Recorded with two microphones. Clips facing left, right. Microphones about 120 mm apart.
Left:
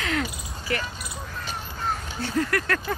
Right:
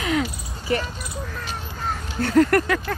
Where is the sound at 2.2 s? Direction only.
55° right (ahead or behind).